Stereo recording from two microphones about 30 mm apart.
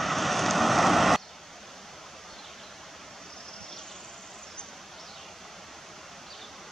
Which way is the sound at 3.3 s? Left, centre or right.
Centre.